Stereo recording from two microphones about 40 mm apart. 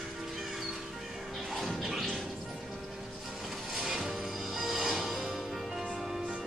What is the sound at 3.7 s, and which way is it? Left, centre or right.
Music, centre.